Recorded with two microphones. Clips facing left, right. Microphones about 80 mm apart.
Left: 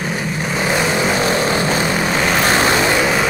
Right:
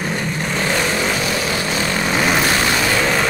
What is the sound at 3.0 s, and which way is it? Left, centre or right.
Vehicle, centre.